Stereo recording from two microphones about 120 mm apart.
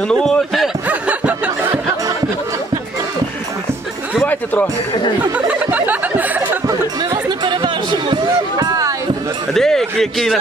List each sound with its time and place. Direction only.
0.1 s a man's voice: 5° left (ahead or behind)
0.8 s snicker: 10° right (ahead or behind)
5.2 s a sound: 15° right (ahead or behind)
6.7 s chatter: 30° right (ahead or behind)
9.5 s a man's voice: 5° left (ahead or behind)